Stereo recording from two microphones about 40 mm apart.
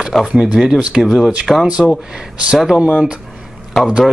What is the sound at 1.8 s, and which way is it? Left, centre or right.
Speech, centre.